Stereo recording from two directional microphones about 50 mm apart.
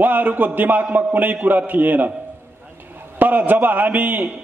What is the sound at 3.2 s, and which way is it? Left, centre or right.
A man's voice, right.